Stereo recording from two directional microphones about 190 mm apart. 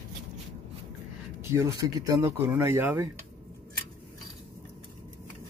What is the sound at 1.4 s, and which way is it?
Speech, 15° right (ahead or behind).